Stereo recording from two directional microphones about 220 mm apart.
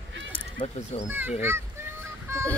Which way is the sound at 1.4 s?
10° right (ahead or behind).